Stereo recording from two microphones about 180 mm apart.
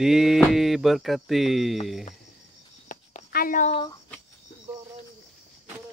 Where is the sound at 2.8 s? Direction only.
50° left (ahead or behind).